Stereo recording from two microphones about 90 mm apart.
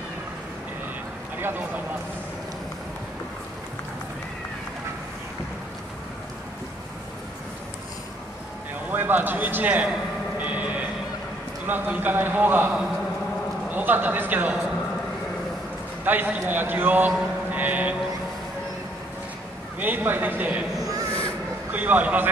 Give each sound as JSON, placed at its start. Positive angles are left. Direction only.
{"t": 1.4, "sound": "speech", "side_deg": -20}
{"t": 8.9, "sound": "a man's voice", "side_deg": -20}
{"t": 10.4, "sound": "fire alarm", "side_deg": -15}
{"t": 11.6, "sound": "a man's voice", "side_deg": -20}
{"t": 16.1, "sound": "a man's voice", "side_deg": -20}
{"t": 19.8, "sound": "a man's voice", "side_deg": -20}
{"t": 20.7, "sound": "a sound", "side_deg": -40}
{"t": 21.7, "sound": "a man's voice", "side_deg": -20}